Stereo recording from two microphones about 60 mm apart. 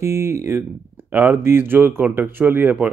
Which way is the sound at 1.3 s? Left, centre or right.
Right.